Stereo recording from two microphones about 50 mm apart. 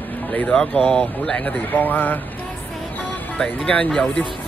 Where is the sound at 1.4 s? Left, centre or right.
Left.